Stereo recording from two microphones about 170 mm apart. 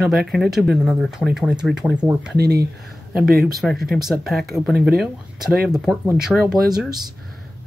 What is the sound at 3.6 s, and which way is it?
Speech, centre (ahead or behind).